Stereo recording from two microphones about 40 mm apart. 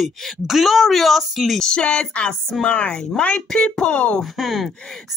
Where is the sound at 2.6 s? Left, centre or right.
Left.